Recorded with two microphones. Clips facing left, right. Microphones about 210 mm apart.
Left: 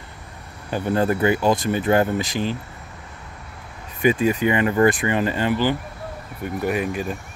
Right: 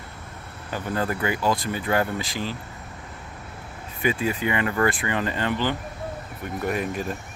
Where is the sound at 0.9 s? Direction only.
25° left (ahead or behind).